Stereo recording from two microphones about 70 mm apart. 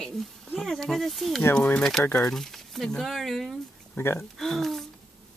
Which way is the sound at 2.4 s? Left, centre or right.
Centre.